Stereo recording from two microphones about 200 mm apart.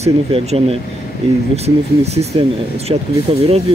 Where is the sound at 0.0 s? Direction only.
30° right (ahead or behind).